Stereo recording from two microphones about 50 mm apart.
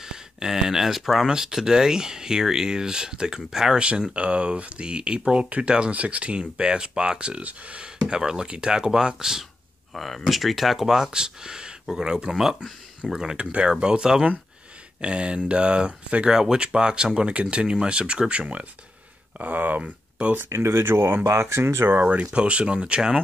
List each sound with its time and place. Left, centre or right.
0.0 s speech: centre
9.9 s speech: centre
13.4 s speech: right
19.3 s speech: right
19.8 s speech: right
20.4 s speech: right
22.0 s speech: right